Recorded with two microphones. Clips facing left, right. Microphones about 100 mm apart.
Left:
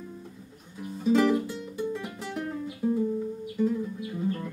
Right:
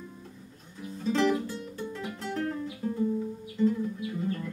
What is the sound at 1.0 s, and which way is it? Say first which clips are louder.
Music: left 3 dB; 10° left (ahead or behind).